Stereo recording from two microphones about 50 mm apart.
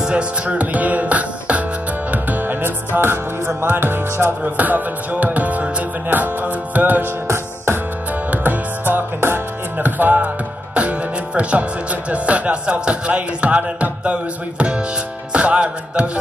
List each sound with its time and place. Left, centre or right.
0.0 s music: right
4.6 s music: right
7.2 s music: right
8.3 s music: right
9.8 s speech: right
15.3 s music: right